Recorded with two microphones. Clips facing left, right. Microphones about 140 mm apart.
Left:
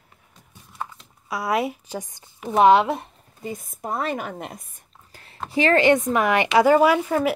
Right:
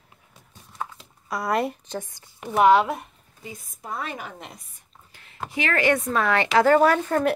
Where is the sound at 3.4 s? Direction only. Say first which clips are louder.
Left 8 dB; 55° left (ahead or behind).